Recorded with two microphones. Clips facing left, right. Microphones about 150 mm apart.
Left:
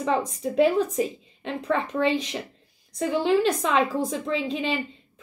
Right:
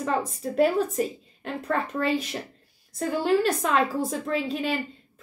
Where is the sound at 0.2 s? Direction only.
5° right (ahead or behind).